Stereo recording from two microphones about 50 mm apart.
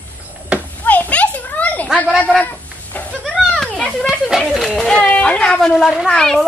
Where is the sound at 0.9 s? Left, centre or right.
Left.